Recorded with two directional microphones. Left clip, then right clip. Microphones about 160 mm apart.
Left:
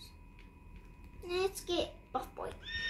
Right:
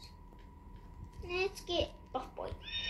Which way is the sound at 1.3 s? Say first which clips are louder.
Left 1 dB; 90° left.